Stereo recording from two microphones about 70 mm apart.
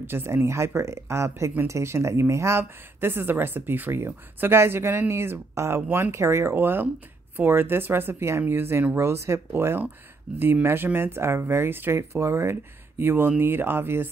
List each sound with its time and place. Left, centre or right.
0.0 s speech: right
12.0 s speech: right
13.0 s speech: right